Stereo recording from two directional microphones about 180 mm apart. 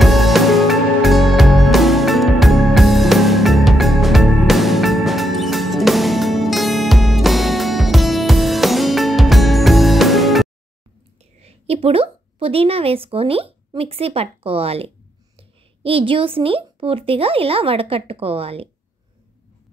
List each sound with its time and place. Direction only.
0.0 s music: centre (ahead or behind)
11.4 s a woman's voice: 35° right (ahead or behind)